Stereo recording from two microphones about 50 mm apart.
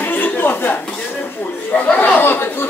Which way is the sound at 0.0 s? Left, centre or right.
Left.